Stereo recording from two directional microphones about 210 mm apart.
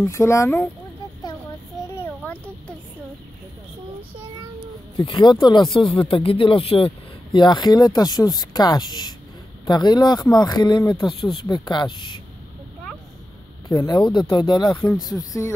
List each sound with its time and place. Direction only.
0.0 s speech: 15° left (ahead or behind)
2.0 s a sound: 5° left (ahead or behind)
4.9 s speech: 20° left (ahead or behind)
13.7 s speech: 20° left (ahead or behind)